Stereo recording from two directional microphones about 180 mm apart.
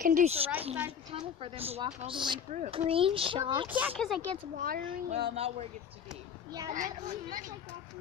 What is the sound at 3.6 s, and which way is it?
Speech, 10° right (ahead or behind).